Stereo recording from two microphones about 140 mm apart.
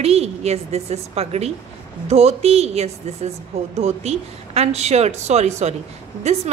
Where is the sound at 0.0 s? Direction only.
50° right (ahead or behind).